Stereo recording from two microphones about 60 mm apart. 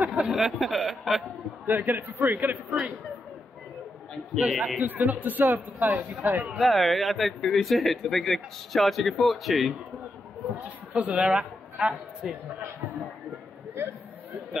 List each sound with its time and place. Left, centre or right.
0.0 s a sound: right
0.3 s speech: centre
1.7 s a man's voice: right
4.4 s a man's voice: centre
6.6 s speech: centre
11.1 s a man's voice: centre